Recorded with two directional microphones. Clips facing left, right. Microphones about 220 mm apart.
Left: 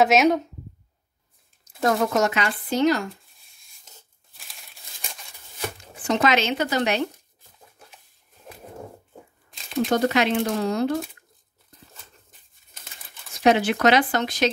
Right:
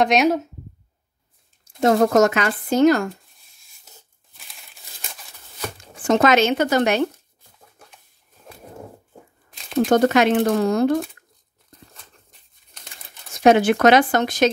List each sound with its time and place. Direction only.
0.0 s speech: centre (ahead or behind)
1.8 s speech: 30° right (ahead or behind)
2.0 s speech: 45° right (ahead or behind)
3.4 s tearing: centre (ahead or behind)
6.0 s speech: 50° right (ahead or behind)
9.8 s speech: 50° right (ahead or behind)
11.9 s dog: centre (ahead or behind)
13.4 s speech: 50° right (ahead or behind)